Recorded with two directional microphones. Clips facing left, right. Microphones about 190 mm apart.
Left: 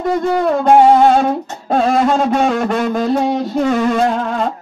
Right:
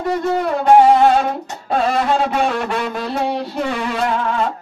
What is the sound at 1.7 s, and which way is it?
Music, 45° left (ahead or behind).